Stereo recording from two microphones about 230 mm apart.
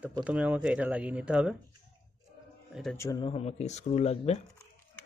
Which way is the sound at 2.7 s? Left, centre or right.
Centre.